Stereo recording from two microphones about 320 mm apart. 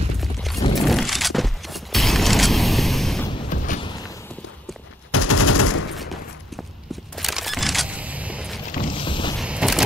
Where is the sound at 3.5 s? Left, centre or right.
Left.